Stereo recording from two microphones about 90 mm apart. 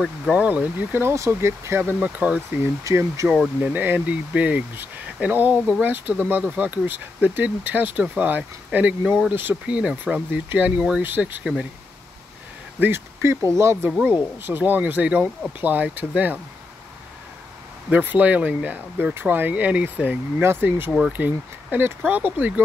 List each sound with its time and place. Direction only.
0.3 s speech: 15° right (ahead or behind)
2.0 s speech: 15° right (ahead or behind)
2.6 s speech: 30° right (ahead or behind)
3.7 s speech: 20° right (ahead or behind)
12.8 s speech: 25° right (ahead or behind)
14.0 s speech: 20° right (ahead or behind)
17.8 s speech: 20° right (ahead or behind)